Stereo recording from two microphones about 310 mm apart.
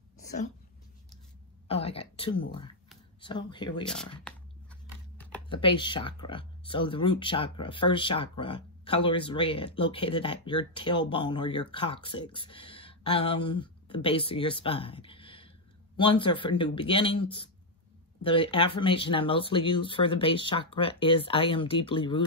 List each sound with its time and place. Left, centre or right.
1.7 s speech: centre
3.8 s speech: centre
5.5 s speech: centre